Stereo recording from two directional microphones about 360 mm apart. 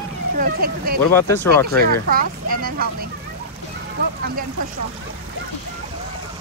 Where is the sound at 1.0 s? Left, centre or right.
Centre.